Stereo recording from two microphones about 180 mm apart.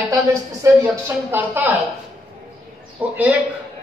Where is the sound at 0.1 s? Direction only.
20° right (ahead or behind).